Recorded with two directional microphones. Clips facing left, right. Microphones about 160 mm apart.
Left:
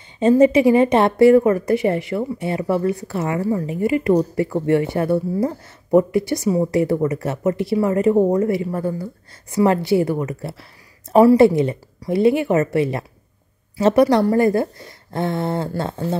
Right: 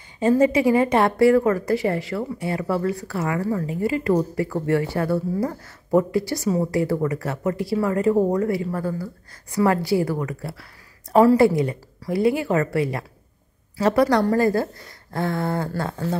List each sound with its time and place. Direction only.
0.2 s a woman's voice: 20° left (ahead or behind)